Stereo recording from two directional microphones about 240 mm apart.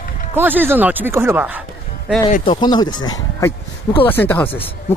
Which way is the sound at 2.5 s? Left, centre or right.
Centre.